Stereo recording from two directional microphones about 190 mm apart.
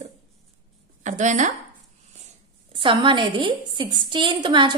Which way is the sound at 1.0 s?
40° right (ahead or behind).